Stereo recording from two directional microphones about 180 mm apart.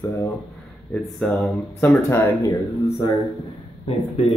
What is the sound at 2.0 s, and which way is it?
Speech, 20° left (ahead or behind).